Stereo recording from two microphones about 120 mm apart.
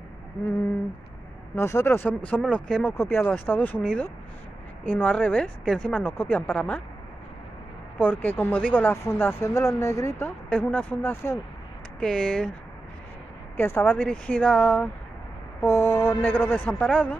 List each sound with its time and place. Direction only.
1.5 s speech: 25° left (ahead or behind)
8.0 s speech: 15° left (ahead or behind)
10.2 s speech: 15° left (ahead or behind)
13.6 s speech: 20° left (ahead or behind)
15.6 s speech: 20° left (ahead or behind)